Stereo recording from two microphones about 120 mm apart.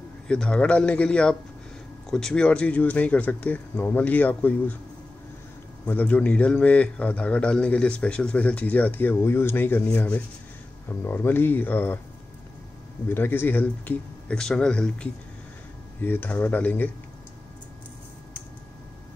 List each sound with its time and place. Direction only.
0.3 s a man's voice: 10° left (ahead or behind)
5.9 s a man's voice: 15° left (ahead or behind)
13.1 s a man's voice: 20° left (ahead or behind)